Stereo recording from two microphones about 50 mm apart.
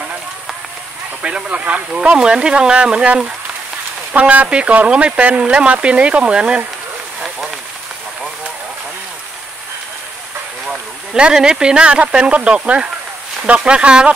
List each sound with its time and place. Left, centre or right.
1.2 s speech: right
4.1 s speech: right
11.1 s speech: centre